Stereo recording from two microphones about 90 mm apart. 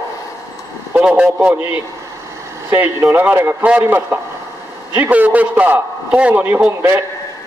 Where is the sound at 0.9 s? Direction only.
15° right (ahead or behind).